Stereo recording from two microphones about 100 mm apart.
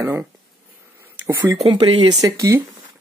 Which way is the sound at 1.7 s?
60° right (ahead or behind).